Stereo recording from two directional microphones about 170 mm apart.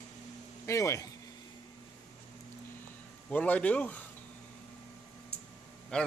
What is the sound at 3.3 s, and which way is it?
Speech, 10° left (ahead or behind).